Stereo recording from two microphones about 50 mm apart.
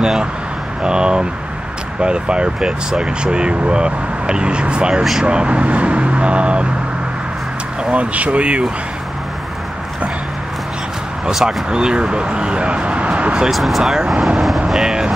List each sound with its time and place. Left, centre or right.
0.0 s speech: centre
7.9 s speech: right
11.3 s speech: centre
13.5 s speech: centre